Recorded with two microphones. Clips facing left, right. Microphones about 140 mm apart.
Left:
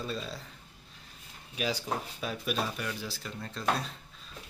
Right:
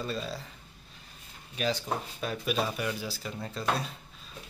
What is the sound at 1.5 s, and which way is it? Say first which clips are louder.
Speech: right 2 dB; 5° left (ahead or behind).